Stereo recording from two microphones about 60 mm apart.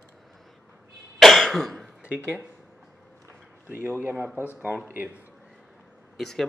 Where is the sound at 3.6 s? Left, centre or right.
Right.